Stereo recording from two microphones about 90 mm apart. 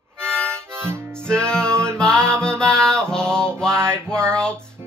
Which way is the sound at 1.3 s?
10° left (ahead or behind).